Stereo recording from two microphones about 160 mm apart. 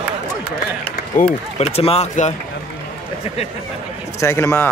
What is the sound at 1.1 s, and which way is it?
Speech, 55° left (ahead or behind).